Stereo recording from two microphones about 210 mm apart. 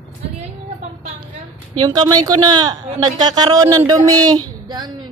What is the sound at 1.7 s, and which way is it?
Speech, 20° right (ahead or behind).